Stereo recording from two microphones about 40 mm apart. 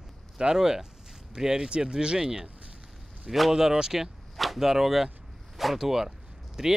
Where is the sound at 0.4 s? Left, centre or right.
Centre.